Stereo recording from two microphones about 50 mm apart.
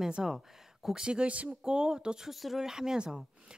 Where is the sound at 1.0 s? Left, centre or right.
Right.